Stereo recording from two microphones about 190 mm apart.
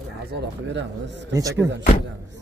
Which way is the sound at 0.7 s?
70° right (ahead or behind).